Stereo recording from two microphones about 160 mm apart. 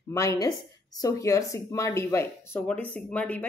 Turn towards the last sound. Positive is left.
turn(degrees=10)  # may be behind; listen again after turning